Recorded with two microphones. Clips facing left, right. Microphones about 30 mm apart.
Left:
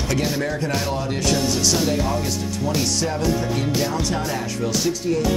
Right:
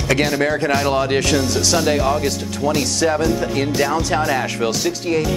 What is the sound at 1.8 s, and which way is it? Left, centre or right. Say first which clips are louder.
Speech: right 5 dB; right.